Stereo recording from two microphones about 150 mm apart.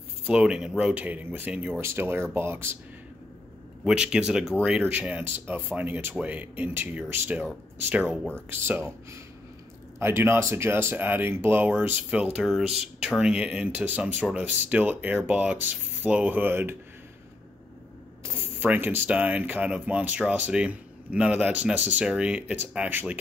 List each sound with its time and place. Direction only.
0.3 s speech: 5° right (ahead or behind)
3.8 s speech: 5° right (ahead or behind)
18.2 s speech: 15° right (ahead or behind)